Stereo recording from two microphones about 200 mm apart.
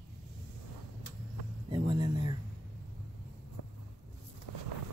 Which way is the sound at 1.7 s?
25° right (ahead or behind).